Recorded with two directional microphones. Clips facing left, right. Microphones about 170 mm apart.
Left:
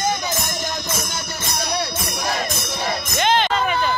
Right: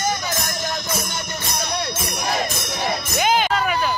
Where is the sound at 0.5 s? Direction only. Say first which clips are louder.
Even; 10° left (ahead or behind).